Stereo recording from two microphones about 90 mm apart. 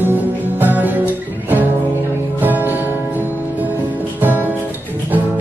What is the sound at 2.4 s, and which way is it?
Music, 20° right (ahead or behind).